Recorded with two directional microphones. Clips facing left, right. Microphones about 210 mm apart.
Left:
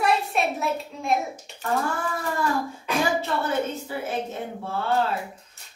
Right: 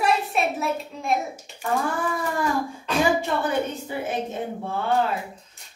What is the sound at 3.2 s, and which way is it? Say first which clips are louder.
Speech: right 1 dB; 15° right (ahead or behind).